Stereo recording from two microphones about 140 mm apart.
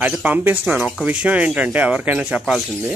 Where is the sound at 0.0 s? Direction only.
10° right (ahead or behind).